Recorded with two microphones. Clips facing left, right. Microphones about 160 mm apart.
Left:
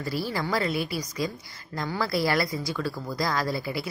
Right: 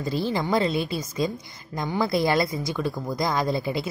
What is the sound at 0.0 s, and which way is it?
A woman's voice, 20° right (ahead or behind).